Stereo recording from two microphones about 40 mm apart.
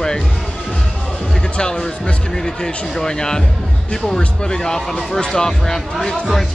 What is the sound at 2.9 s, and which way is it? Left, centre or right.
Speech, centre.